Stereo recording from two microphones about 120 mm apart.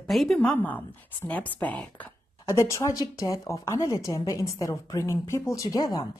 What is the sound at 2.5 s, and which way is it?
A woman's voice, 25° left (ahead or behind).